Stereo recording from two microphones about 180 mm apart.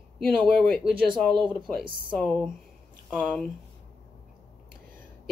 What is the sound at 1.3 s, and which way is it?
Speech, 25° right (ahead or behind).